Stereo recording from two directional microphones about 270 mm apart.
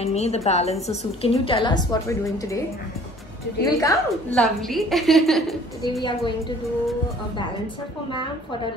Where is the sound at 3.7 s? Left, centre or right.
Centre.